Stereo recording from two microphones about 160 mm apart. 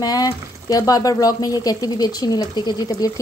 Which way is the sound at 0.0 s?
25° left (ahead or behind).